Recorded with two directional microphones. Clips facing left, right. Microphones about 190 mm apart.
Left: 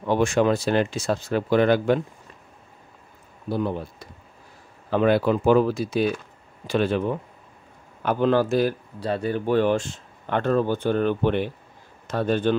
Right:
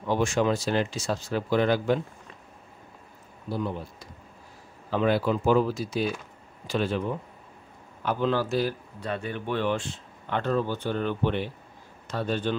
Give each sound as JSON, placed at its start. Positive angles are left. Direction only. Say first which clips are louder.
{"t": 0.0, "sound": "speech", "louder": "left 4 dB", "side_deg": 60}
{"t": 3.4, "sound": "speech", "louder": "left 5 dB", "side_deg": 60}
{"t": 9.0, "sound": "speech", "louder": "left 7 dB", "side_deg": 35}